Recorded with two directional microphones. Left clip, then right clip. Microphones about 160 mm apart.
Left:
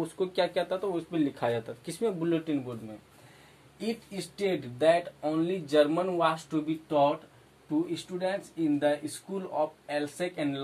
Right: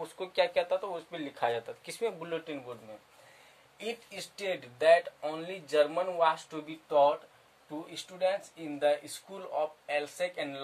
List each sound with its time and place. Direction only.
0.0 s speech: 15° right (ahead or behind)
4.4 s speech: 20° right (ahead or behind)